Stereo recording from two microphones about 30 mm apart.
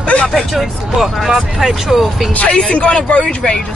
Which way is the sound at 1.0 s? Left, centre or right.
Centre.